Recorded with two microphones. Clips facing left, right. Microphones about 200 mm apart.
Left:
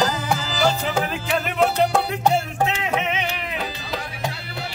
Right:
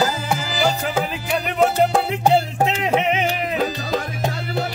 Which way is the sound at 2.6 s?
35° right (ahead or behind).